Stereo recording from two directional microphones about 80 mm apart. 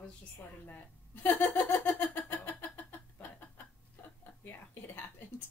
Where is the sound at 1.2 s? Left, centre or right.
Left.